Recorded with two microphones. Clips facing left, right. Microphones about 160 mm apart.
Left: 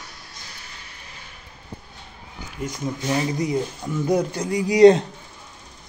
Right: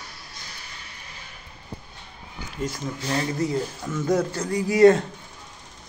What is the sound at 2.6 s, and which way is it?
Speech, 15° left (ahead or behind).